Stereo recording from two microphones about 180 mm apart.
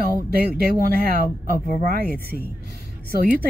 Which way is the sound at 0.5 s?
55° right (ahead or behind).